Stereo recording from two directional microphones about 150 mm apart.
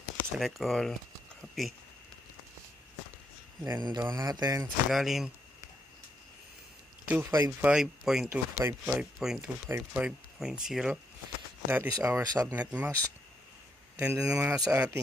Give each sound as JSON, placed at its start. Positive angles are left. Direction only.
{"t": 0.4, "sound": "speech", "side_deg": 0}
{"t": 3.6, "sound": "speech", "side_deg": -25}
{"t": 4.9, "sound": "speech", "side_deg": 0}
{"t": 7.1, "sound": "speech", "side_deg": -15}
{"t": 7.7, "sound": "speech", "side_deg": -5}
{"t": 8.5, "sound": "speech", "side_deg": -15}
{"t": 9.2, "sound": "speech", "side_deg": -5}
{"t": 11.6, "sound": "speech", "side_deg": -15}
{"t": 13.9, "sound": "speech", "side_deg": -10}